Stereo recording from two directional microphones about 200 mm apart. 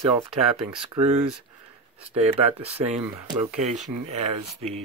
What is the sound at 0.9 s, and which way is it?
Speech, 30° right (ahead or behind).